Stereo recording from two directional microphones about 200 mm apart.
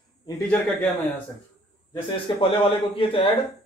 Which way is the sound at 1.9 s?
25° left (ahead or behind).